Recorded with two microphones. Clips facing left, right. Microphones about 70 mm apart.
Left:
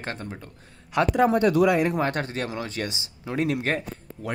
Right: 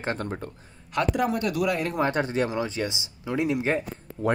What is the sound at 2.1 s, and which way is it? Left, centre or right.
Speech, right.